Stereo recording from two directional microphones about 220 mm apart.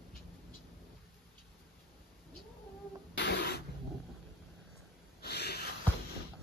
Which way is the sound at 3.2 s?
50° left (ahead or behind).